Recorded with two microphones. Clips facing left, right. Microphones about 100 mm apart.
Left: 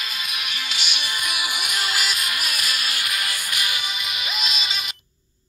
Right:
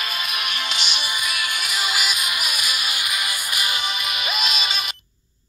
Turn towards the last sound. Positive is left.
turn(degrees=-60)  # may be behind; listen again after turning